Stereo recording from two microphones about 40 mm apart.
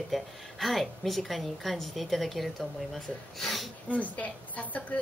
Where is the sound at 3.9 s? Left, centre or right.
Left.